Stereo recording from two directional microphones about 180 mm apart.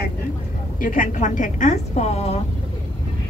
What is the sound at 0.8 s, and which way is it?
A woman's voice, 50° left (ahead or behind).